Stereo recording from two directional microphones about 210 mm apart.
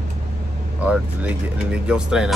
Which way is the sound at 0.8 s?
5° right (ahead or behind).